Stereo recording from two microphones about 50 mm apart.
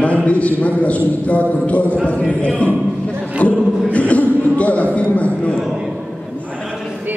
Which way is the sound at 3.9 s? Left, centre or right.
Left.